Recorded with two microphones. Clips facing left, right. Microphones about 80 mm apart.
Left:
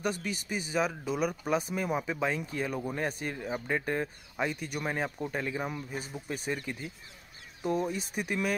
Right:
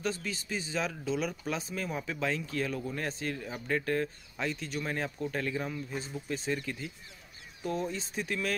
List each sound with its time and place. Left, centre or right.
0.2 s speech: centre